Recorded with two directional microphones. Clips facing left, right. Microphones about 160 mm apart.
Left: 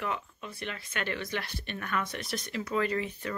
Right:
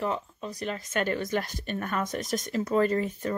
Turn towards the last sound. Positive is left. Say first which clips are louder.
# right 5 dB
turn(degrees=-45)  # may be behind; listen again after turning